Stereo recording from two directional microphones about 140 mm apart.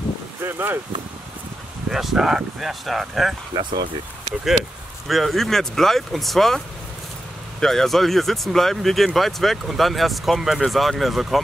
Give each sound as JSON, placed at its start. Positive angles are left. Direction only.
{"t": 0.4, "sound": "speech", "side_deg": -15}
{"t": 1.9, "sound": "speech", "side_deg": -5}
{"t": 3.5, "sound": "speech", "side_deg": -30}
{"t": 5.0, "sound": "speech", "side_deg": 0}
{"t": 7.6, "sound": "speech", "side_deg": 5}